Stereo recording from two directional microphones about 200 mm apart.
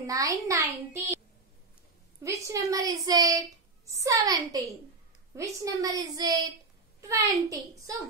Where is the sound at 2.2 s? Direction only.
15° right (ahead or behind).